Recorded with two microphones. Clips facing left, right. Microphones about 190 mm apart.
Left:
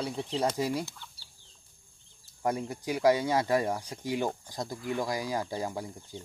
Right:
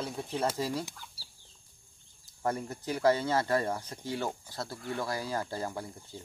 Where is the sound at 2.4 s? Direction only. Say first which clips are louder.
Left 2 dB; 15° left (ahead or behind).